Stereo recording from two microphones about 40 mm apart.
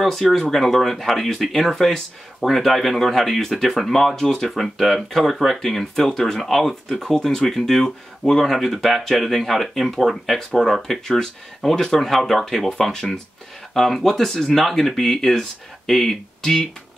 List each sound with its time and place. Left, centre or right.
0.3 s speech: centre
5.9 s speech: centre